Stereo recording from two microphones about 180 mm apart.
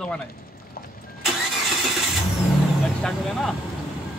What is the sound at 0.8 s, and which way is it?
Vehicle, 55° left (ahead or behind).